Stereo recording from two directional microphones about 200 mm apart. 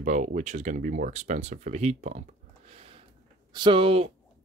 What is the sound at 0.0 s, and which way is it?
Speech, 40° right (ahead or behind).